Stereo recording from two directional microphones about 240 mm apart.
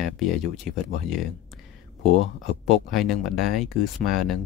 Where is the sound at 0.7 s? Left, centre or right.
Right.